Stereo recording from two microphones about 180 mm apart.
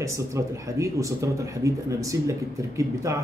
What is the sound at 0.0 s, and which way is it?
A man's voice, 15° right (ahead or behind).